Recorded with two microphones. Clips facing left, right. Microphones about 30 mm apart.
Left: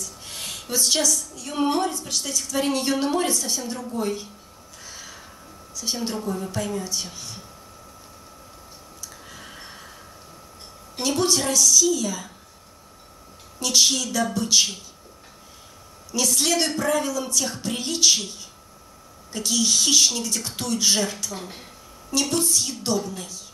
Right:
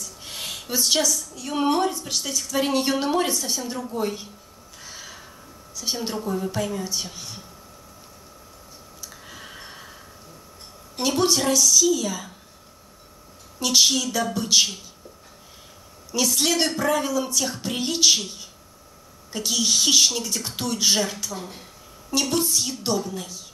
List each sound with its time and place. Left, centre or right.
0.0 s a woman's voice: centre
4.8 s a sound: centre
5.8 s a woman's voice: centre
9.3 s a sound: centre
11.0 s a woman's voice: centre
13.6 s a woman's voice: centre
16.1 s a woman's voice: centre
19.3 s a woman's voice: centre
21.4 s speech: centre
22.1 s a woman's voice: centre